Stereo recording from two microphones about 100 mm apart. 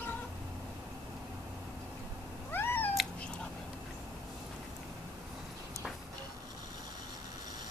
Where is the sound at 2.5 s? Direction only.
20° left (ahead or behind).